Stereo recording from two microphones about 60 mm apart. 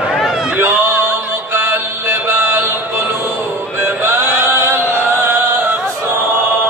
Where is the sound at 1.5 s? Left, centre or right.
Right.